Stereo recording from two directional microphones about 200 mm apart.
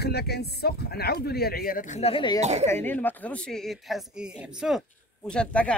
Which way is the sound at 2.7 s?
10° left (ahead or behind).